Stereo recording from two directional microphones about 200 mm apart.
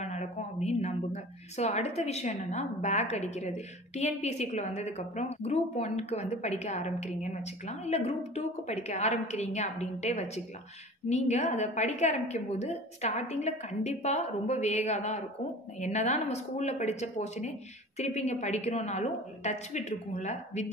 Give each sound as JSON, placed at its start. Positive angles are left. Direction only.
{"t": 0.0, "sound": "speech", "side_deg": 35}